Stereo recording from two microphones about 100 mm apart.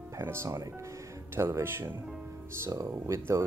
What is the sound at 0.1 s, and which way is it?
Speech, 25° right (ahead or behind).